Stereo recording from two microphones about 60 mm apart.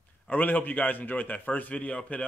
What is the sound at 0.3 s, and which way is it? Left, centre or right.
Speech, left.